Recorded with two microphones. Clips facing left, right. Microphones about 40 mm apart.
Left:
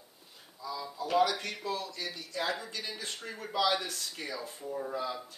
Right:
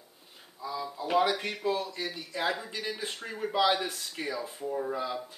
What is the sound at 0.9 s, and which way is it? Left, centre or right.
Speech, right.